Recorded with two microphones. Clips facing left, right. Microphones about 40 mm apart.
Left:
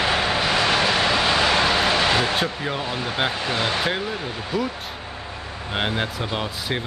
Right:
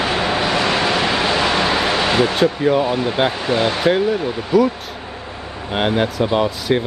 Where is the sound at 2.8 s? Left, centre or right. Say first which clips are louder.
Right 7 dB; right.